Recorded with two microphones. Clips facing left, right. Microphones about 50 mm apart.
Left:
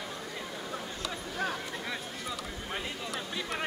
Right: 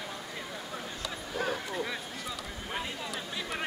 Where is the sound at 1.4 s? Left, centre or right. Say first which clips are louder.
Right 2 dB; centre.